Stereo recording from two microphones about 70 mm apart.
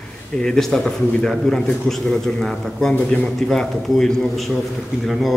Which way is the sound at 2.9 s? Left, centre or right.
Left.